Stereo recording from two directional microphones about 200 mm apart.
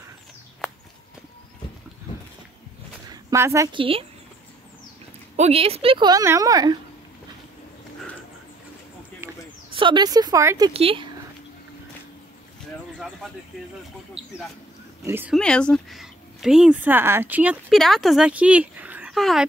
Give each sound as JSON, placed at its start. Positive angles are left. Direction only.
{"t": 3.1, "sound": "speech", "side_deg": -15}
{"t": 5.3, "sound": "a woman's voice", "side_deg": -30}
{"t": 9.8, "sound": "a woman's voice", "side_deg": -25}
{"t": 10.7, "sound": "a woman's voice", "side_deg": -30}
{"t": 14.2, "sound": "a woman's voice", "side_deg": -30}
{"t": 15.0, "sound": "speech", "side_deg": -10}
{"t": 15.3, "sound": "speech", "side_deg": 5}